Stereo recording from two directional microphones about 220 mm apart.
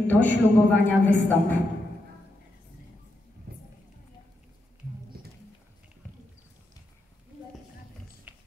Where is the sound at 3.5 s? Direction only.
45° right (ahead or behind).